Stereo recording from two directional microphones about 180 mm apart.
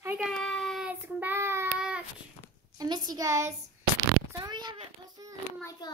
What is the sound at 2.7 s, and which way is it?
Speech, 25° right (ahead or behind).